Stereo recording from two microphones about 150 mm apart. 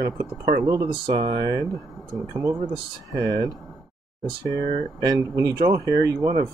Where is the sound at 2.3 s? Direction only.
30° right (ahead or behind).